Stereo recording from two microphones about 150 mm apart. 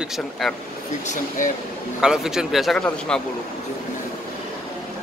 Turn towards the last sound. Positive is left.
turn(degrees=5)  # may be behind; listen again after turning